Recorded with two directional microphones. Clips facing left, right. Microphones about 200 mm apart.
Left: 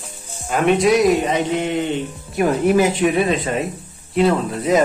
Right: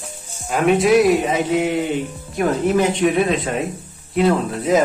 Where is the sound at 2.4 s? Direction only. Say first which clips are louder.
Left 2 dB; 5° left (ahead or behind).